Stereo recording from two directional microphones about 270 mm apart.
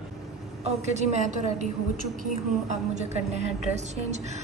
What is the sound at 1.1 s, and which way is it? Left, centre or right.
Speech, right.